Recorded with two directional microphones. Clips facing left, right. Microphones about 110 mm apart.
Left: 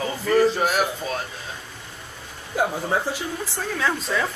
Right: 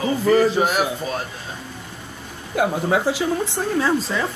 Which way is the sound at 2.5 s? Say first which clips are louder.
Right 4 dB; 90° right.